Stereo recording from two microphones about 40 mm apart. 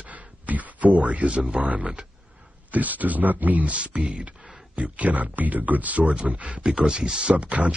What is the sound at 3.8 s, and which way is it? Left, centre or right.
Speech, right.